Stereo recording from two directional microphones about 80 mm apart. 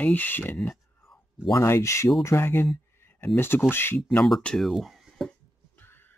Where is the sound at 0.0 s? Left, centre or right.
Left.